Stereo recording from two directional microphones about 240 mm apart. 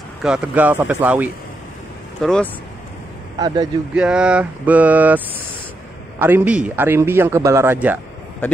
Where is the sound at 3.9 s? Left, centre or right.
Centre.